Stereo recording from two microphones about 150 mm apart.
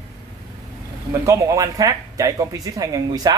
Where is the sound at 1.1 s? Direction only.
20° right (ahead or behind).